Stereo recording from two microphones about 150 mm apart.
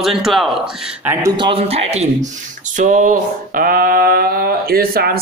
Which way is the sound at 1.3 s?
35° right (ahead or behind).